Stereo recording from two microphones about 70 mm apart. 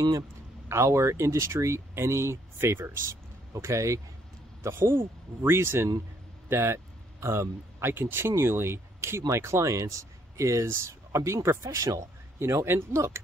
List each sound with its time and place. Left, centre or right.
0.7 s speech: right
3.5 s speech: right
4.6 s speech: right
12.4 s speech: right